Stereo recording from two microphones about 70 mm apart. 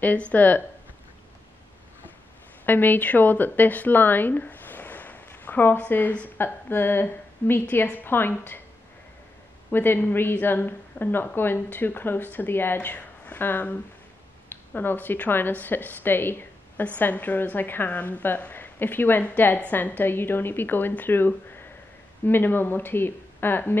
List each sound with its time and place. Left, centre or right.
0.0 s a woman's voice: left
2.6 s a woman's voice: left
9.7 s a woman's voice: left